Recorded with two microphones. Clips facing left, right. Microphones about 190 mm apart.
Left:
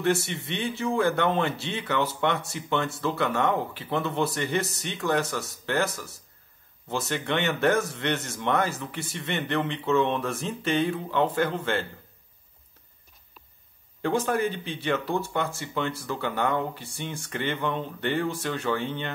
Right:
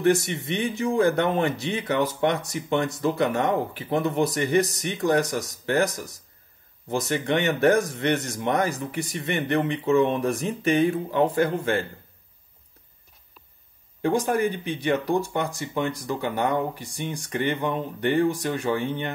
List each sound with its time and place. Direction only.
0.0 s speech: 15° right (ahead or behind)
14.0 s speech: 15° right (ahead or behind)